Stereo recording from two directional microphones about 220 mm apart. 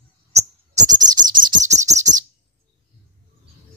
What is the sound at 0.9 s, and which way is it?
Beatboxing, 20° right (ahead or behind).